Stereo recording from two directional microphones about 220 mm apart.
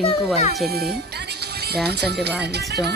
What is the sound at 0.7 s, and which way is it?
Speech, 45° right (ahead or behind).